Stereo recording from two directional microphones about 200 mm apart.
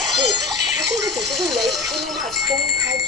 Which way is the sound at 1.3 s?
Centre (ahead or behind).